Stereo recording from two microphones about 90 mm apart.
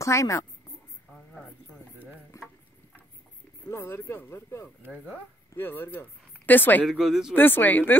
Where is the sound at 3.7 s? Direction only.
30° left (ahead or behind).